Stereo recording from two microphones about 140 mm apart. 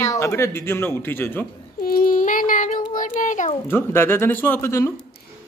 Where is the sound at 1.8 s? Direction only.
90° left; by 3.5 s 65° left (ahead or behind).